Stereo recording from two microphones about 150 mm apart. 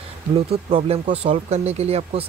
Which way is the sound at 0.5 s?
40° right (ahead or behind).